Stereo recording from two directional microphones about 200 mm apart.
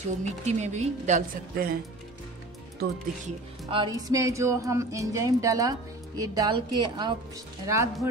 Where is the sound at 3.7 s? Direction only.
20° right (ahead or behind).